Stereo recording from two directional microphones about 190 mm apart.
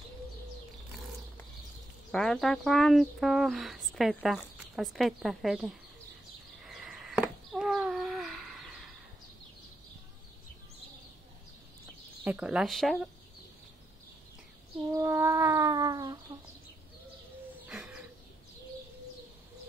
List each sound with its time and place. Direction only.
2.1 s speech: centre (ahead or behind)
6.6 s a sound: centre (ahead or behind)
12.3 s speech: 5° right (ahead or behind)
14.9 s cat: 15° right (ahead or behind)
17.6 s bird: 5° right (ahead or behind)